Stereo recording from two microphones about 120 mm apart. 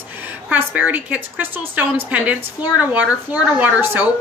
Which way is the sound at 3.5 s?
15° right (ahead or behind).